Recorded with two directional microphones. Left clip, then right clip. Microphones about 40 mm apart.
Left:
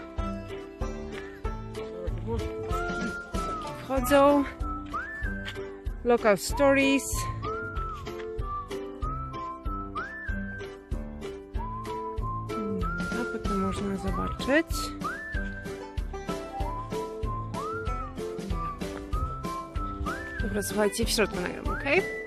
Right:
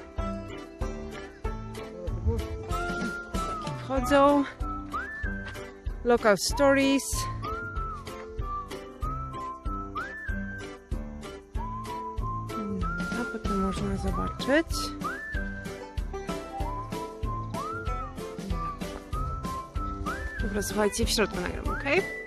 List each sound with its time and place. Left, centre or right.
2.3 s music: centre
3.9 s speech: centre
4.9 s music: centre
6.2 s speech: right
6.6 s music: centre
8.7 s music: centre
12.4 s music: centre
14.5 s speech: centre
15.0 s whistling: centre
16.3 s music: centre
21.3 s speech: centre